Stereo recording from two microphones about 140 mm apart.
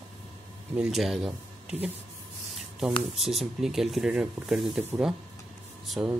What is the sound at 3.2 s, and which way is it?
Speech, 5° right (ahead or behind).